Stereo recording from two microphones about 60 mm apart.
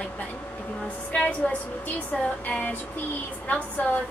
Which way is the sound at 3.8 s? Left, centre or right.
Left.